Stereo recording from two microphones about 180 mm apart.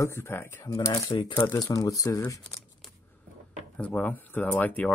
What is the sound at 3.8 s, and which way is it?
Speech, 10° left (ahead or behind).